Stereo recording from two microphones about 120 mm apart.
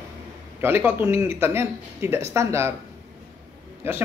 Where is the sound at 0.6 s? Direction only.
20° right (ahead or behind).